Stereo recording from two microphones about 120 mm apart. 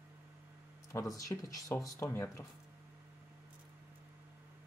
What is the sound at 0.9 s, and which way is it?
Speech, 30° left (ahead or behind).